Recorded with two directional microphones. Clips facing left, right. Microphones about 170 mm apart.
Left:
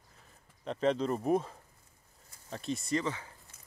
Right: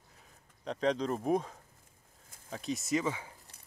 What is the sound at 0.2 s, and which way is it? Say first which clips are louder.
Speech: even; centre (ahead or behind).